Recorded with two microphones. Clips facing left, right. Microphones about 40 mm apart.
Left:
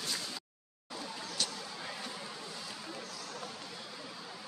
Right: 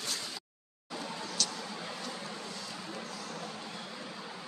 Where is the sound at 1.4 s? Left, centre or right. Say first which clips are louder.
Right 1 dB; left.